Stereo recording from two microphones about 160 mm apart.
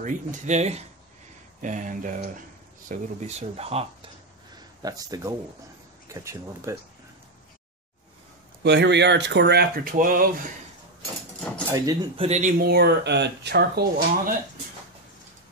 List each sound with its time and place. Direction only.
0.0 s speech: 45° right (ahead or behind)
4.6 s speech: 20° right (ahead or behind)
8.6 s speech: 90° right; by 10.5 s 60° right (ahead or behind)
11.7 s speech: 25° right (ahead or behind)
12.2 s speech: 45° right (ahead or behind)
12.6 s speech: 90° right